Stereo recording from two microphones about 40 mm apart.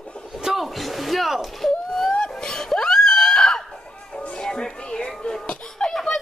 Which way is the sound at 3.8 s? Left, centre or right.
Left.